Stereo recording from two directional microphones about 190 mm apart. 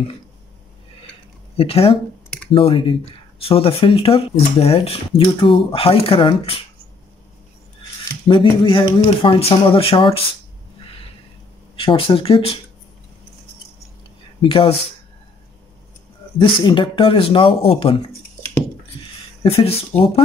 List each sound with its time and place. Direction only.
1.6 s speech: 30° left (ahead or behind)
8.3 s speech: 25° left (ahead or behind)
11.8 s speech: 30° left (ahead or behind)
14.4 s speech: 30° left (ahead or behind)
16.3 s speech: 25° left (ahead or behind)
18.9 s a sound: 25° left (ahead or behind)
19.4 s speech: 30° left (ahead or behind)